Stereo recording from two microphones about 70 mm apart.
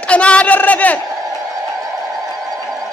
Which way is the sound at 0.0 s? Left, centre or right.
Centre.